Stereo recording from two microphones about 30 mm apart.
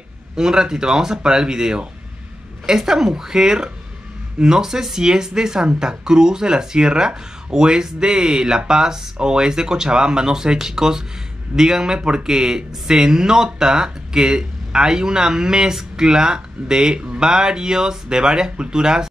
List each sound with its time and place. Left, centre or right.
0.4 s speech: right